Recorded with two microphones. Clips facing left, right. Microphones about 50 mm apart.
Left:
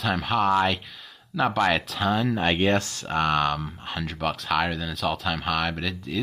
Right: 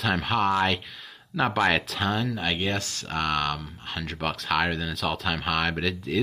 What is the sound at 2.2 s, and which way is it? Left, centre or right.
Speech, left.